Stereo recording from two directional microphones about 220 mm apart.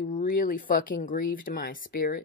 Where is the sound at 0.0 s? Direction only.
35° left (ahead or behind).